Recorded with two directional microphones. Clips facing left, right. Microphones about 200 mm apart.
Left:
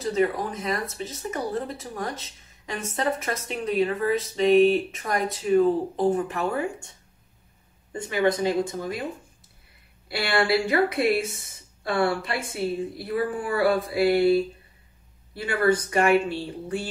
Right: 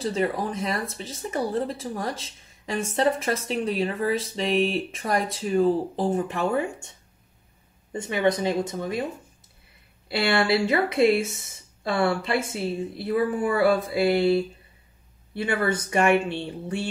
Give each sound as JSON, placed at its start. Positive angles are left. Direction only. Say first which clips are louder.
{"t": 0.0, "sound": "speech", "louder": "left 1 dB", "side_deg": -30}
{"t": 8.0, "sound": "a woman's voice", "louder": "even", "side_deg": -25}
{"t": 10.0, "sound": "a woman's voice", "louder": "right 2 dB", "side_deg": -25}